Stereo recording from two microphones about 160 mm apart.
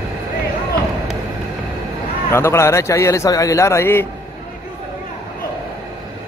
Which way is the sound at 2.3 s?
15° left (ahead or behind).